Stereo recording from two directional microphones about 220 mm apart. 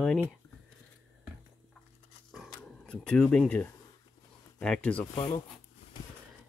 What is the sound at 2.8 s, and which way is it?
Speech, 5° left (ahead or behind).